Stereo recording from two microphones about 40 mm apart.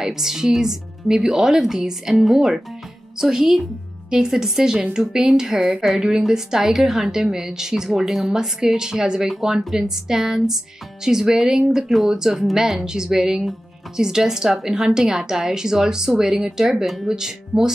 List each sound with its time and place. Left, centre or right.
0.0 s speech: centre
16.8 s speech: centre
17.1 s speech: centre